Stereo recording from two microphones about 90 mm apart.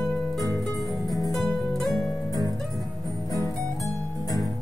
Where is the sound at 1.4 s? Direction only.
5° left (ahead or behind).